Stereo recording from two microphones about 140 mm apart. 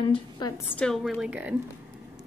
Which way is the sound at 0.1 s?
30° left (ahead or behind).